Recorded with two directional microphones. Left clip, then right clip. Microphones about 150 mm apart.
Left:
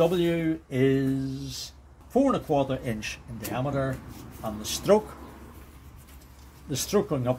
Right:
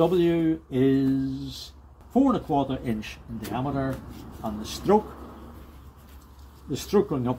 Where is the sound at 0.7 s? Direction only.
40° left (ahead or behind).